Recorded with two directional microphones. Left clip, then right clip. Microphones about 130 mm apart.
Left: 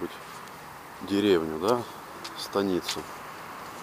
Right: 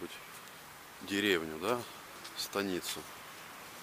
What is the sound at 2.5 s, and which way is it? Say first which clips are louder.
Speech: left 9 dB; 40° right (ahead or behind).